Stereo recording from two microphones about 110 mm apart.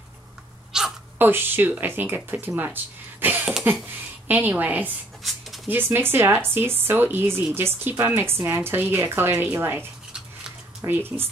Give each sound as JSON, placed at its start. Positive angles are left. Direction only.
{"t": 0.7, "sound": "sneeze", "side_deg": -5}
{"t": 1.1, "sound": "a woman's voice", "side_deg": -20}
{"t": 10.9, "sound": "a woman's voice", "side_deg": -20}